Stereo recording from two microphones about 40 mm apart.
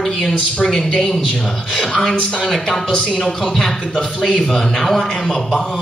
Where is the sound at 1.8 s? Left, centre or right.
Centre.